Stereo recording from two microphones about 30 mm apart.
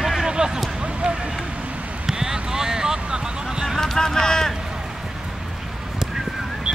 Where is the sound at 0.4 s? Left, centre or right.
Right.